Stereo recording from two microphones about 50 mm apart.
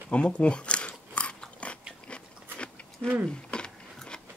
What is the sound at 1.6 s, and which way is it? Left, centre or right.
Biting, left.